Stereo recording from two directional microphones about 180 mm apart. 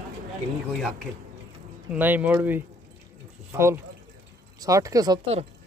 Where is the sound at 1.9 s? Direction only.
10° right (ahead or behind).